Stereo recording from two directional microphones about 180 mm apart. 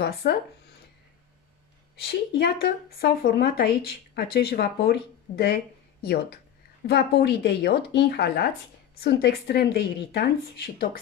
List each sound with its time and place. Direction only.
0.0 s speech: 65° left (ahead or behind)
2.0 s speech: 65° left (ahead or behind)